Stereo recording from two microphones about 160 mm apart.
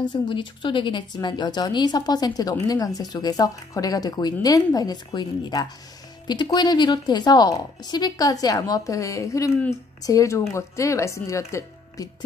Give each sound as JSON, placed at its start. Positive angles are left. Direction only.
{"t": 0.0, "sound": "speech", "side_deg": 30}